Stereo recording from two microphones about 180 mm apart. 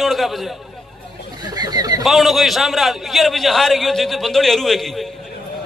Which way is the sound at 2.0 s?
Centre (ahead or behind).